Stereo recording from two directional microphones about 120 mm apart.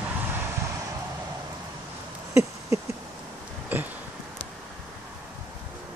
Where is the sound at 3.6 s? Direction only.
15° right (ahead or behind).